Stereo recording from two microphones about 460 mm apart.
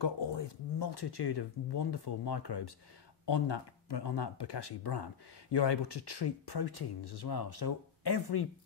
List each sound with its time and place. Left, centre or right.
0.0 s speech: left